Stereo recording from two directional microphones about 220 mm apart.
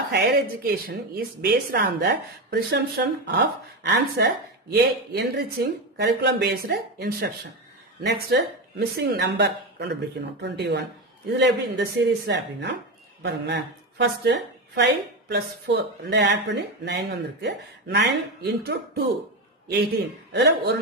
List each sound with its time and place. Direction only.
0.1 s a woman's voice: 50° right (ahead or behind)
20.3 s a woman's voice: 50° right (ahead or behind)